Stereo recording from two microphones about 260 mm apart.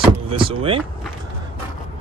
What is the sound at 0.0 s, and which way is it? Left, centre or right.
Vehicle, centre.